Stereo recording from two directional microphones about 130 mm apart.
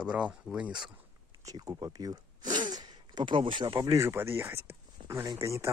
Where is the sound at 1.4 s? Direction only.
25° right (ahead or behind).